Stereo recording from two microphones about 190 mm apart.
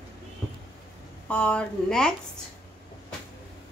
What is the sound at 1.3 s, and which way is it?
Speech, 5° left (ahead or behind).